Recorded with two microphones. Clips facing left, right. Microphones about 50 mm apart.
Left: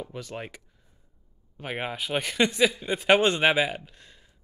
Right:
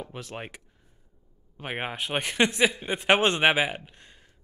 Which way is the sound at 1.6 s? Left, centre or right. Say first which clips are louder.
Even; right.